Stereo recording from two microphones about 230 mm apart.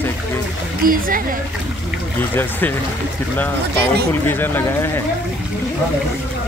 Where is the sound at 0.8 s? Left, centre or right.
Right.